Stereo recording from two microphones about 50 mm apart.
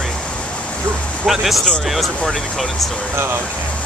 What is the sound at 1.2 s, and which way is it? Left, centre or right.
Speech, centre.